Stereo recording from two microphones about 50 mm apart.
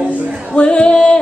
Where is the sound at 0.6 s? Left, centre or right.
Left.